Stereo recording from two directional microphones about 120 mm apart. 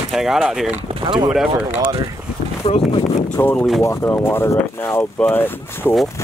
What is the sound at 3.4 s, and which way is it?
Speech, 20° left (ahead or behind).